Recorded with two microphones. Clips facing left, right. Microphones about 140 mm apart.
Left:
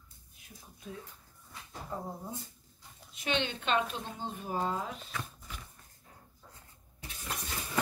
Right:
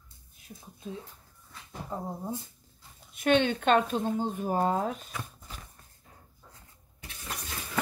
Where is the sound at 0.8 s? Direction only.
30° right (ahead or behind).